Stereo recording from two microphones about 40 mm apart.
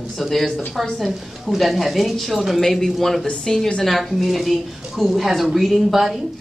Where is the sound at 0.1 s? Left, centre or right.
Centre.